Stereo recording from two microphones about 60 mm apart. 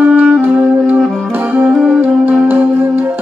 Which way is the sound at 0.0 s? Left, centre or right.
Right.